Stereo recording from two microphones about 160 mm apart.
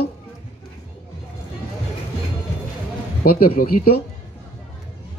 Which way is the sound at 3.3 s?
65° left (ahead or behind).